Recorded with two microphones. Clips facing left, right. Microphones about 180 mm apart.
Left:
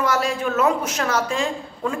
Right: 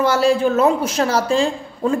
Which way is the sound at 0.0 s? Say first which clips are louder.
Right 6 dB; 30° right (ahead or behind).